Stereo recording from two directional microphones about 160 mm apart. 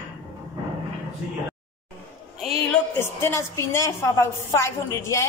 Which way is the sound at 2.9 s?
15° left (ahead or behind).